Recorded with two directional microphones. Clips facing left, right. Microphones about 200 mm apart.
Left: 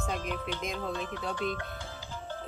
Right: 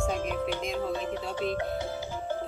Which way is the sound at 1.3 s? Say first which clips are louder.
Right 4 dB; 15° right (ahead or behind).